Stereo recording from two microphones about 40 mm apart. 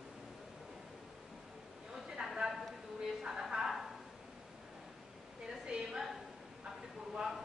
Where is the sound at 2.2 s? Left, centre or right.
Centre.